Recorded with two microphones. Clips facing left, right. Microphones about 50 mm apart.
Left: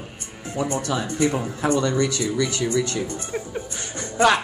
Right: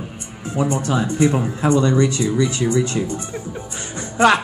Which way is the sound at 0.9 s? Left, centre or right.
Right.